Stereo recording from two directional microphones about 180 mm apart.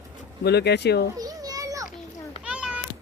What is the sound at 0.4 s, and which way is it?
Speech, 65° left (ahead or behind).